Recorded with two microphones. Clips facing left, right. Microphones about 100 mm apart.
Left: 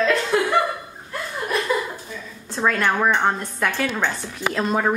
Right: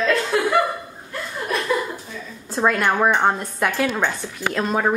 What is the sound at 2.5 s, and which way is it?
A woman's voice, 10° right (ahead or behind).